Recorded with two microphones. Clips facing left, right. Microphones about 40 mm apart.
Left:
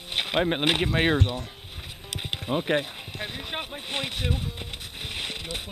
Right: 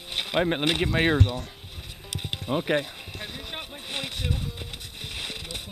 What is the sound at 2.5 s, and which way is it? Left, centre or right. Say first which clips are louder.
Speech: even; centre.